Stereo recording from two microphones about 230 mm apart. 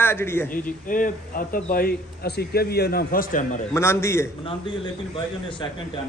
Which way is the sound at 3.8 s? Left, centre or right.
Centre.